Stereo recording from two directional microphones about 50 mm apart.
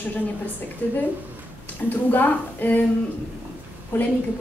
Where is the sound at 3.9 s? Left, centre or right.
Left.